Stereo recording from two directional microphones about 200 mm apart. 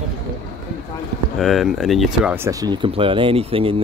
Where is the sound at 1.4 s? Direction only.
Centre (ahead or behind).